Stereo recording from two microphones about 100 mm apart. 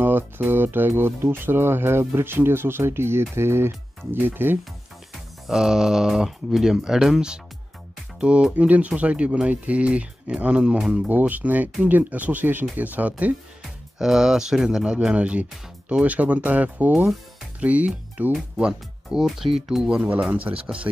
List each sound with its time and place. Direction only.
0.0 s speech: 20° right (ahead or behind)
5.5 s speech: 5° right (ahead or behind)
13.9 s speech: 5° right (ahead or behind)